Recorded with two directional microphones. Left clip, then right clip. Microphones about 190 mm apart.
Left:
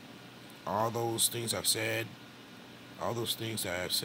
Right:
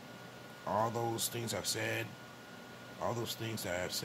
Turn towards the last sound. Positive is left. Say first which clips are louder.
# left 3 dB
turn(degrees=10)  # may be behind; listen again after turning